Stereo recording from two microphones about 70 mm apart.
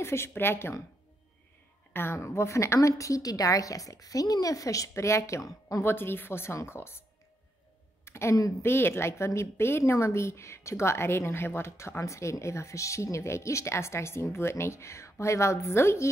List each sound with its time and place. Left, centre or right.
0.0 s a woman's voice: left
2.1 s speech: left
5.9 s a woman's voice: left
8.0 s a sound: left
8.6 s a woman's voice: left